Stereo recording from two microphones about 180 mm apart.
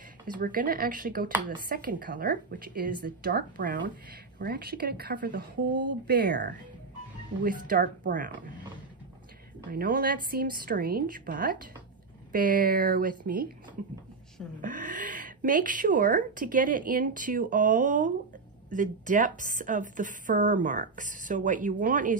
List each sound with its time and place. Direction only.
0.3 s speech: 50° right (ahead or behind); by 6.5 s 65° right (ahead or behind)
7.4 s speech: 50° right (ahead or behind)
9.7 s speech: 55° right (ahead or behind)
14.6 s speech: 45° right (ahead or behind)